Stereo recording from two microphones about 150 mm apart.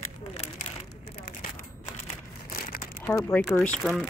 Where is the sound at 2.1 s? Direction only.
75° left (ahead or behind).